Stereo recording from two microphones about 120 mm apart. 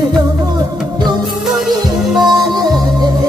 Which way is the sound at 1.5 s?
Centre (ahead or behind).